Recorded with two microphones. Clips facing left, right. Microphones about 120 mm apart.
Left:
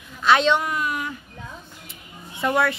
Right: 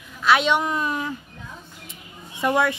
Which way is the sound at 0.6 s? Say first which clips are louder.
Right 1 dB; 25° right (ahead or behind).